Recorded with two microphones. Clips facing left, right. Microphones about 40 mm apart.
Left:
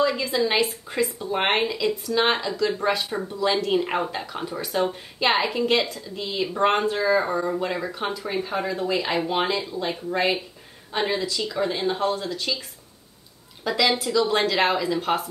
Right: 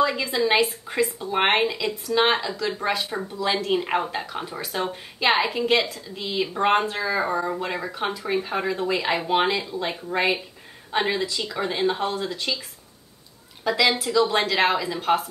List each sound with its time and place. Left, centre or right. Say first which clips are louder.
0.1 s speech: right 1 dB; centre
13.7 s speech: right 1 dB; centre